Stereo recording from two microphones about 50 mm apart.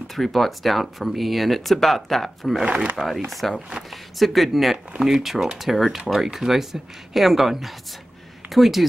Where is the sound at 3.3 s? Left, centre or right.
Centre.